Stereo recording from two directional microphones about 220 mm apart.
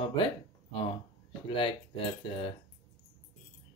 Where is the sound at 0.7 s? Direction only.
25° left (ahead or behind).